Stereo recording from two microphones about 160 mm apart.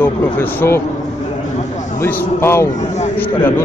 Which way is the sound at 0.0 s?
15° left (ahead or behind).